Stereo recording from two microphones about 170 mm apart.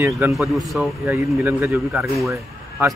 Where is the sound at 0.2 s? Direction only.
10° right (ahead or behind).